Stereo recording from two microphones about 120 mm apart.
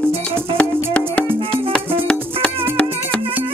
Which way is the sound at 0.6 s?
10° left (ahead or behind).